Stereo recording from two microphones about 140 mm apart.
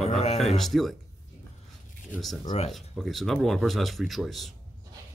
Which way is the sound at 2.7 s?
Centre (ahead or behind).